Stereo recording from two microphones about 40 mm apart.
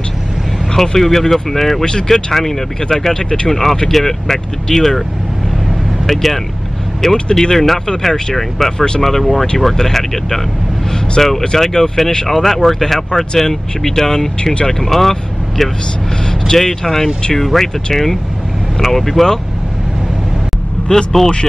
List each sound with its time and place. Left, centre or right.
0.7 s speech: centre
6.0 s speech: centre
8.7 s speech: left
9.0 s speech: centre
12.3 s speech: centre
12.8 s speech: centre
20.9 s speech: centre